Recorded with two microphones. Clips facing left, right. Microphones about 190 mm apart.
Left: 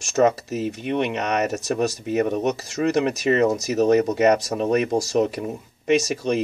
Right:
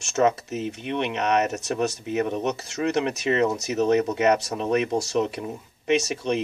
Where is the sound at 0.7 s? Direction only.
45° left (ahead or behind).